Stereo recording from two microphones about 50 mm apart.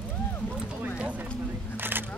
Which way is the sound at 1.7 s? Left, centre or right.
Right.